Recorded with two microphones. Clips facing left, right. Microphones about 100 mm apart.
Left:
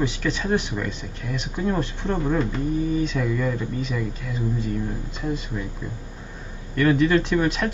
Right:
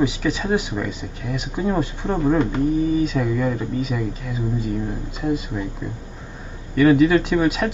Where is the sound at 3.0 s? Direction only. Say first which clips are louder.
Right 3 dB; 5° right (ahead or behind).